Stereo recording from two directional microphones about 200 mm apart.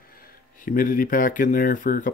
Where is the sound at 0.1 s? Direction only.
45° left (ahead or behind).